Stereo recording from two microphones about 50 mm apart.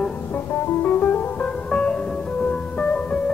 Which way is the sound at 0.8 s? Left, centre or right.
Left.